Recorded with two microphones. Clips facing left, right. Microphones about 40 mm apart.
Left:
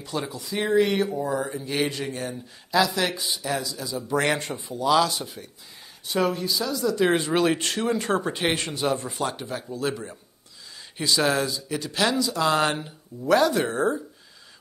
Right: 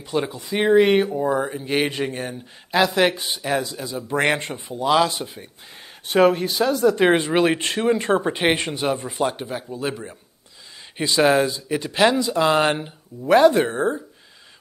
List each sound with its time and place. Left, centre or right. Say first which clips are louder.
0.0 s speech: right 6 dB; right
6.0 s speech: right 8 dB; right